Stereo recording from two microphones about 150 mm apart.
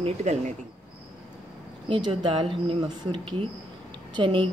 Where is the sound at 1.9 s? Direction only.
30° right (ahead or behind).